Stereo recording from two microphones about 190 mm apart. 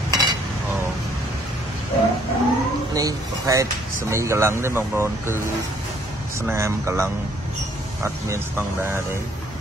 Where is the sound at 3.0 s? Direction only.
15° right (ahead or behind).